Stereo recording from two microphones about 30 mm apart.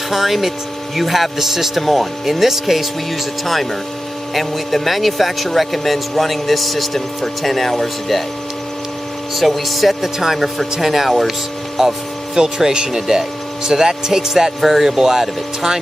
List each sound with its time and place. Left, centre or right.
0.1 s speech: centre
1.8 s speech: centre
2.2 s speech: centre
4.3 s speech: centre
9.4 s speech: centre
10.1 s speech: centre
10.4 s speech: centre
12.4 s speech: right
14.6 s speech: centre
14.9 s speech: centre